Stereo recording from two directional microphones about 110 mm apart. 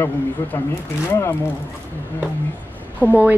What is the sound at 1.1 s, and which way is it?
Speech, 20° left (ahead or behind).